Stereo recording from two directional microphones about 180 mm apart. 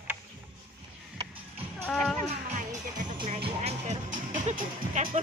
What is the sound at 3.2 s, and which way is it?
Speech, 30° right (ahead or behind).